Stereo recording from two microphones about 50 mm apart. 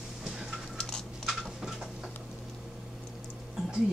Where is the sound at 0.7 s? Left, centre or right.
Centre.